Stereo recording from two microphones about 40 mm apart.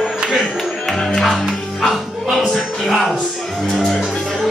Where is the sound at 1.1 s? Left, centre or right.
Centre.